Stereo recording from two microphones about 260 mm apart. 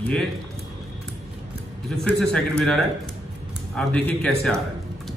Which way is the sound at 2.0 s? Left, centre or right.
Centre.